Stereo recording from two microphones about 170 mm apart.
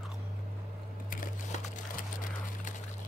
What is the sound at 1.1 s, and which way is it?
Crumpling, 50° left (ahead or behind).